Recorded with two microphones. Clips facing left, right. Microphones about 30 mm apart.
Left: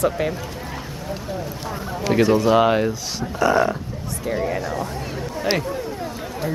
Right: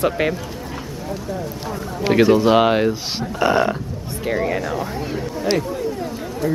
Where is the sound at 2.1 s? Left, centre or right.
Right.